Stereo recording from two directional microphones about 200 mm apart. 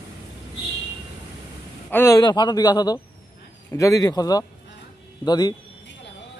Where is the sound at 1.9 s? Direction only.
10° left (ahead or behind).